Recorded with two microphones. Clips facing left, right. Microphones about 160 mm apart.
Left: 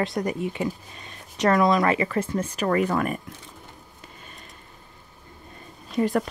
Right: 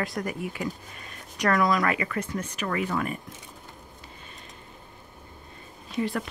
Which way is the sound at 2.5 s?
40° left (ahead or behind).